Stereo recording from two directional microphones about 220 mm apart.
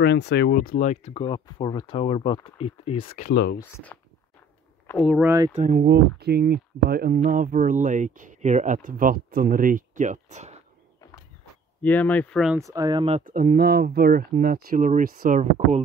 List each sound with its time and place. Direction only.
0.0 s speech: 50° left (ahead or behind); by 3.3 s 25° left (ahead or behind)
3.3 s speech: 45° left (ahead or behind)
3.5 s speech: 10° left (ahead or behind)
5.5 s speech: 40° right (ahead or behind)
11.8 s speech: 5° left (ahead or behind)
12.5 s speech: 15° right (ahead or behind)
13.2 s speech: 40° right (ahead or behind)